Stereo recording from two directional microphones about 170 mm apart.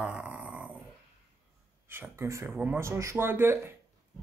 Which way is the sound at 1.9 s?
15° right (ahead or behind).